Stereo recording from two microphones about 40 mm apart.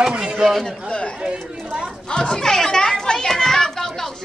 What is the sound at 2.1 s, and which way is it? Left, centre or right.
A child's voice, centre.